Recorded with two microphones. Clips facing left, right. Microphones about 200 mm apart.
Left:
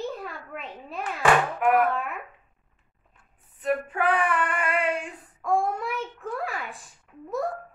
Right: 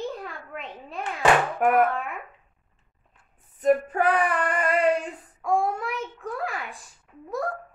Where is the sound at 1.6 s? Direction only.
45° right (ahead or behind).